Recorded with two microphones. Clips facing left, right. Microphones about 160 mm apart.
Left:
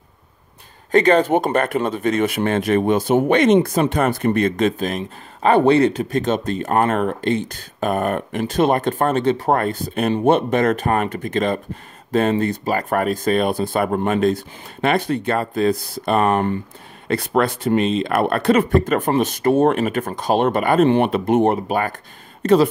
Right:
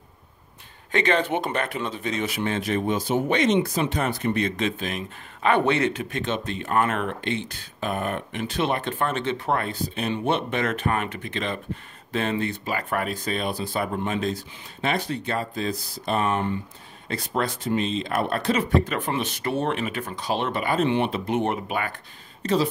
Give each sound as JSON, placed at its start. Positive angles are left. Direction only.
{"t": 0.9, "sound": "speech", "side_deg": 40}
{"t": 22.4, "sound": "speech", "side_deg": 55}